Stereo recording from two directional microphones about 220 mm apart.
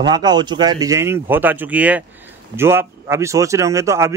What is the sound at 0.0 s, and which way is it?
Speech, 20° right (ahead or behind).